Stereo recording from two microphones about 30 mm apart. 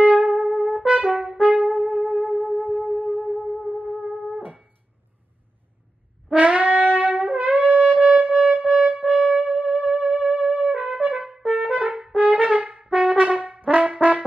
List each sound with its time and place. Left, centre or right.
0.0 s trumpet: right
0.6 s brass instrument: right
1.4 s trumpet: right
2.0 s music: right
6.3 s shofar: right
9.0 s music: right
11.4 s brass instrument: right
12.8 s brass instrument: right
13.9 s brass instrument: right